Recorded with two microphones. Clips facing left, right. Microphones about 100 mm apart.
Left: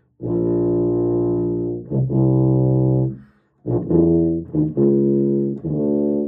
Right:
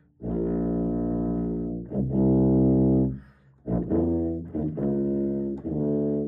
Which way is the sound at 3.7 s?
40° left (ahead or behind).